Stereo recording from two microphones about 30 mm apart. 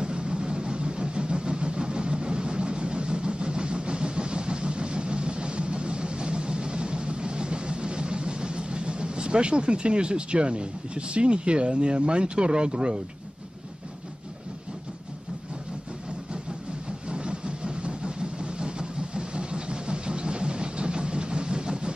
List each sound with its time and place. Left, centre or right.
0.0 s vehicle: right
17.1 s vehicle: right